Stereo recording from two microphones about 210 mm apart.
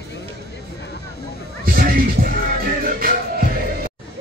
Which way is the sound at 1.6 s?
45° right (ahead or behind).